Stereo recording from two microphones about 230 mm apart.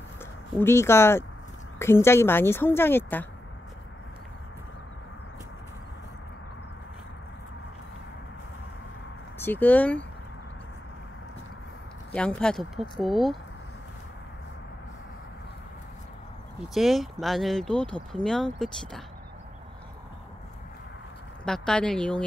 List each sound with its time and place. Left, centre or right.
0.6 s speech: centre
9.4 s speech: centre
12.1 s speech: centre
16.7 s speech: centre
21.5 s speech: centre